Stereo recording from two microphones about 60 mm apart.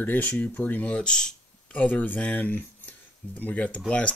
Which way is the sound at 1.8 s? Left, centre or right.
Left.